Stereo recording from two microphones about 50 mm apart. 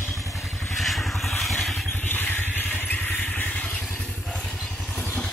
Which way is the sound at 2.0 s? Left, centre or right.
Left.